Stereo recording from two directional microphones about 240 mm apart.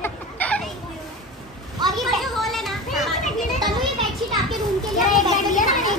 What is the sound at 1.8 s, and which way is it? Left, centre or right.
Children playing, centre.